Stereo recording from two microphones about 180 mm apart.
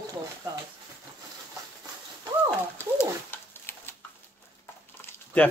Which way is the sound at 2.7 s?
10° left (ahead or behind).